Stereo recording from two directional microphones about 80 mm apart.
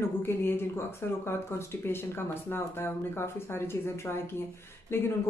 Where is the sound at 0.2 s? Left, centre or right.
Left.